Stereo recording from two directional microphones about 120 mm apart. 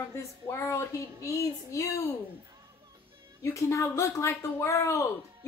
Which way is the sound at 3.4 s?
25° left (ahead or behind).